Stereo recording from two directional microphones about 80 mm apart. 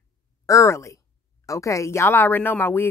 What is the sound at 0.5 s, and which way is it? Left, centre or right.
Speech, left.